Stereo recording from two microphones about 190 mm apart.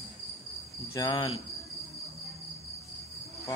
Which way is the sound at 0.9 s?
20° left (ahead or behind).